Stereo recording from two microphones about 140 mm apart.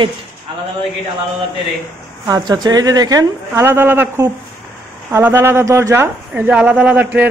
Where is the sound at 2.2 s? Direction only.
25° right (ahead or behind).